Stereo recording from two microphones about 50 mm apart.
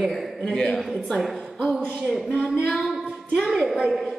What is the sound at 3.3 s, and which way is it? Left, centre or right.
Speech, centre.